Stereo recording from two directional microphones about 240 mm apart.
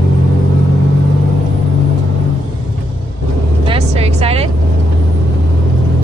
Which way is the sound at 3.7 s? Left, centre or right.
Right.